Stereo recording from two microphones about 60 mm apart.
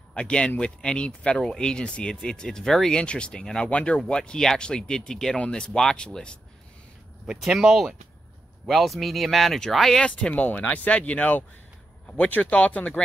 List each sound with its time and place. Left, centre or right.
0.1 s speech: centre
7.5 s speech: centre
9.9 s speech: centre